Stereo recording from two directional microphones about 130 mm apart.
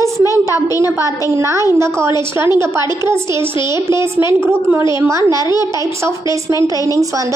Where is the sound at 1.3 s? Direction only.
20° right (ahead or behind).